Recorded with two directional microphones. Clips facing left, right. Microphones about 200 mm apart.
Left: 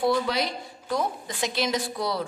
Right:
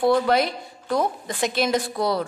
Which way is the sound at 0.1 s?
55° right (ahead or behind).